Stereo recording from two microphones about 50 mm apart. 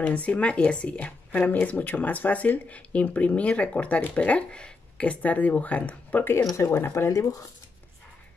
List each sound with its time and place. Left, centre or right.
0.0 s speech: left
6.5 s speech: left